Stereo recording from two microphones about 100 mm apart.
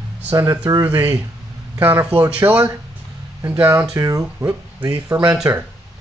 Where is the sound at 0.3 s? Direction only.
30° right (ahead or behind).